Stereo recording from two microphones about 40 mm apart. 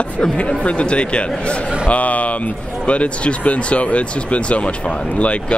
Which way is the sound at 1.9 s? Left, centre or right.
Left.